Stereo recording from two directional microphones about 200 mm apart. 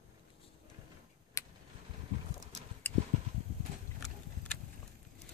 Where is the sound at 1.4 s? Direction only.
15° left (ahead or behind).